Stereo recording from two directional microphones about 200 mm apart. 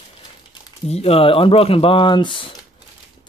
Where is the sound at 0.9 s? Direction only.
30° left (ahead or behind).